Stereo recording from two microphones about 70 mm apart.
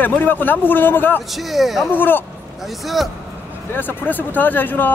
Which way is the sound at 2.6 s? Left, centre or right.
Centre.